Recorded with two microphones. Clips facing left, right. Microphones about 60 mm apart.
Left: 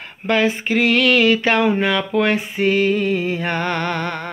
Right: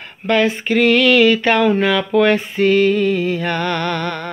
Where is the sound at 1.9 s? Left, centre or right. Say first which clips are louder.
Right 4 dB; centre.